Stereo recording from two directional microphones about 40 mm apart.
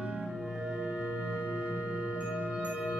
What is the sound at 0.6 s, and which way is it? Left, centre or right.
Music, right.